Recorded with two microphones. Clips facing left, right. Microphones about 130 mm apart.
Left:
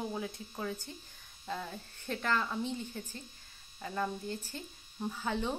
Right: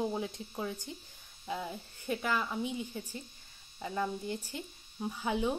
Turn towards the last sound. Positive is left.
turn(degrees=-10)  # may be behind; listen again after turning